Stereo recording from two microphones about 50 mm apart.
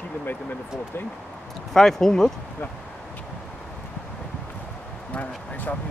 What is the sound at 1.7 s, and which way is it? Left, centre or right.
Speech, centre.